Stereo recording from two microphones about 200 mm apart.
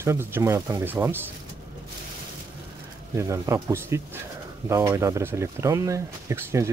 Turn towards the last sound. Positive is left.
turn(degrees=-15)  # may be behind; listen again after turning